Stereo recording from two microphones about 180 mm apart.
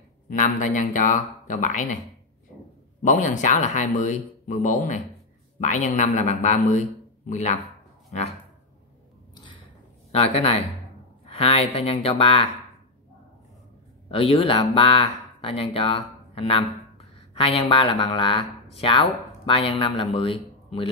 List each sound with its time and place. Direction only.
0.3 s speech: 45° left (ahead or behind)
3.0 s speech: 45° left (ahead or behind)
9.3 s a sound: 25° left (ahead or behind)
10.1 s speech: 35° left (ahead or behind)
14.0 s speech: 30° left (ahead or behind)